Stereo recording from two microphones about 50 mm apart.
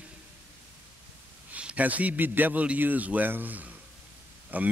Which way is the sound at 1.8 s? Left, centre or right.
Right.